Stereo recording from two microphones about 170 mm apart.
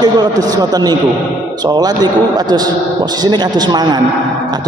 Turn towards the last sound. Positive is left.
turn(degrees=-25)  # may be behind; listen again after turning